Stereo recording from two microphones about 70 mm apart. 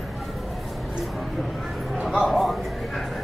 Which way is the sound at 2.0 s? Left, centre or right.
Centre.